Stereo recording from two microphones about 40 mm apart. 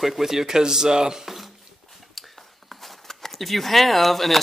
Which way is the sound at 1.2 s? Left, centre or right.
Centre.